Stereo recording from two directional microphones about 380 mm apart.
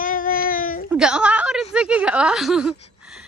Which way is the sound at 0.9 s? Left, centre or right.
Centre.